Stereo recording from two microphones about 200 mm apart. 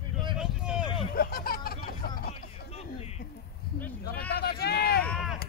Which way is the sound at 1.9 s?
50° left (ahead or behind).